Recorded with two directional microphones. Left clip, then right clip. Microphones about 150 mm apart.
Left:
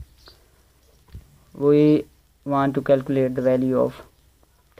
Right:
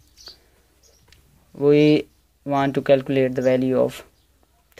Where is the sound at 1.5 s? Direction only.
15° right (ahead or behind).